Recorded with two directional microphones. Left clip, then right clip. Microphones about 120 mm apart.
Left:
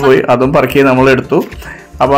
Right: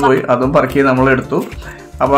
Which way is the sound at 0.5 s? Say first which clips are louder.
Left 3 dB; 40° left (ahead or behind).